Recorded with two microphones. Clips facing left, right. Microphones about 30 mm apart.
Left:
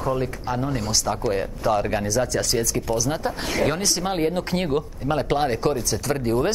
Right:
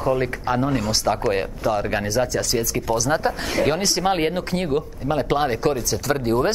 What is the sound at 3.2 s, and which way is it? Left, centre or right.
Speech, right.